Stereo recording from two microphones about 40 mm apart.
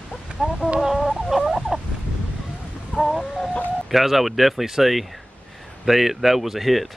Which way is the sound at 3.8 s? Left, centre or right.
Centre.